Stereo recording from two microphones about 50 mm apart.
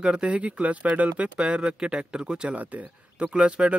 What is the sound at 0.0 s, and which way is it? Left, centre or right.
Speech, right.